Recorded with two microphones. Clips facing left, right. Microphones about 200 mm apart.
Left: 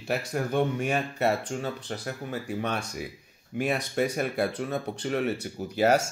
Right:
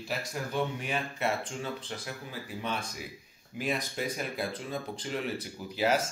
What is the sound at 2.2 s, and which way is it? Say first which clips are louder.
Speech: left 6 dB; 65° left (ahead or behind).